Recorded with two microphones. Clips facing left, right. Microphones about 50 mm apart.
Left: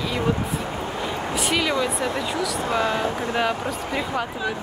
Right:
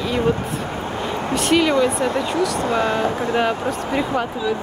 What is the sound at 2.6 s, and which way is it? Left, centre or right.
Speech, right.